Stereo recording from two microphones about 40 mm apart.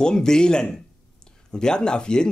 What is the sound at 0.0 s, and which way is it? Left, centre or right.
Speech, centre.